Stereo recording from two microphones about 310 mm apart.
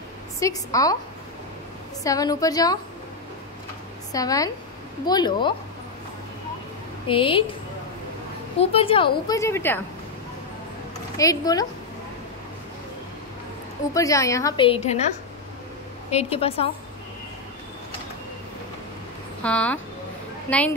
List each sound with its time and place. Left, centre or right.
0.4 s a woman's voice: centre
2.0 s a woman's voice: centre
4.1 s a woman's voice: centre
7.1 s a woman's voice: centre
8.5 s a woman's voice: centre
11.1 s a woman's voice: centre
13.9 s a woman's voice: centre
19.4 s speech: centre